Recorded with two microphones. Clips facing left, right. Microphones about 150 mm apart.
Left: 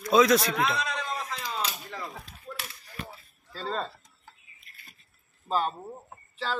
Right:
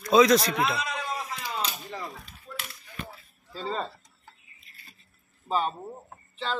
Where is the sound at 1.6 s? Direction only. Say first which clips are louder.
Right 1 dB; 15° right (ahead or behind).